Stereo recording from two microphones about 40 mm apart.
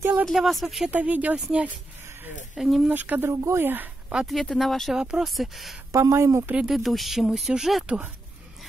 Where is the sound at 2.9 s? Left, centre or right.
Right.